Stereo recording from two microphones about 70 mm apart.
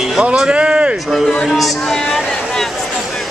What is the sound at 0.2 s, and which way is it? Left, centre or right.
Speech, centre.